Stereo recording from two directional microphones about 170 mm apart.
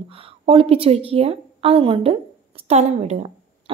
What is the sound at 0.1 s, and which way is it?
A woman's voice, 30° right (ahead or behind).